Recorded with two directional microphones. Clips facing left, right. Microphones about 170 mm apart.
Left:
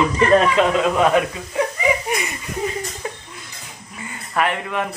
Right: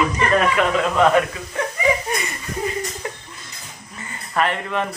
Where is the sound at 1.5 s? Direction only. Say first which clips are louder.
Left 4 dB; 15° left (ahead or behind).